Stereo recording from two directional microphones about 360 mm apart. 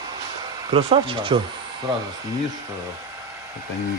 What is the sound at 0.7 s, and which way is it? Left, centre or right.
Speech, centre.